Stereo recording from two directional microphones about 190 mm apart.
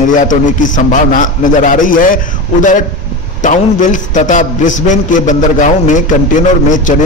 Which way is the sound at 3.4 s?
40° left (ahead or behind).